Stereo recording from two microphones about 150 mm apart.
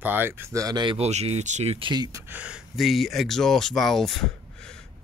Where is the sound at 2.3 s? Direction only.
5° right (ahead or behind).